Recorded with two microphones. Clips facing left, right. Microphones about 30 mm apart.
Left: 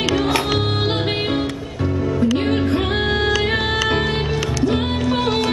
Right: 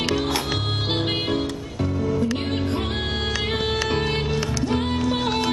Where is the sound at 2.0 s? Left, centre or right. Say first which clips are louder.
Left 5 dB; centre.